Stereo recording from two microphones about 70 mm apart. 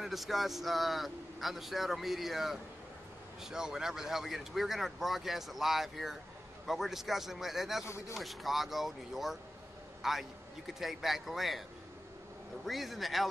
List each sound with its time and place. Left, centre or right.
0.0 s speech: centre
12.6 s speech: centre